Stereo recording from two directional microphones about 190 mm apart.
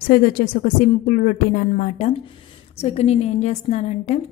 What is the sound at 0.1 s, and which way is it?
A woman's voice, 50° left (ahead or behind).